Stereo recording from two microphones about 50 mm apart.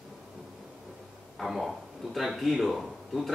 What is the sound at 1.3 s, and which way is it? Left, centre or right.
A man's voice, centre.